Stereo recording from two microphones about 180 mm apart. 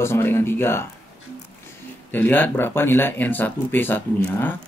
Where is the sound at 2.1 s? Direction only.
10° left (ahead or behind).